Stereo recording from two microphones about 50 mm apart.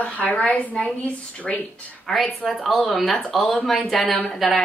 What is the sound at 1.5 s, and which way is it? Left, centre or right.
Speech, centre.